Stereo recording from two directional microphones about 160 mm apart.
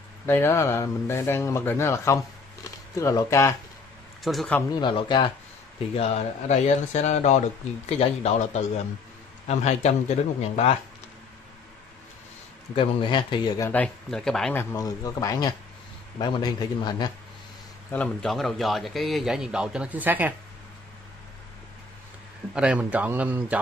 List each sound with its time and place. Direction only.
0.3 s speech: 15° left (ahead or behind)
4.2 s a man's voice: centre (ahead or behind)
4.7 s speech: 30° left (ahead or behind)
12.7 s speech: 30° left (ahead or behind)
13.7 s a man's voice: 10° left (ahead or behind)
14.6 s speech: 20° left (ahead or behind)
17.9 s a man's voice: 5° left (ahead or behind)
22.5 s a man's voice: 5° right (ahead or behind)